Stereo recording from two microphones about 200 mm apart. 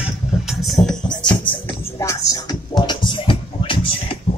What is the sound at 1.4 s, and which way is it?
Music, 10° left (ahead or behind).